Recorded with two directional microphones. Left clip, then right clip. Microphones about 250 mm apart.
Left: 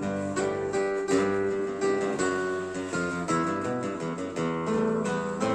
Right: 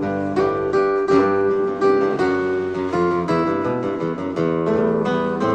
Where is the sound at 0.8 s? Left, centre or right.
Left.